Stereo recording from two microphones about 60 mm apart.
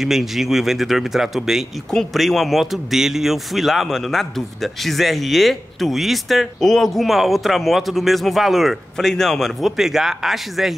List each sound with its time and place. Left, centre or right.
0.0 s a man's voice: centre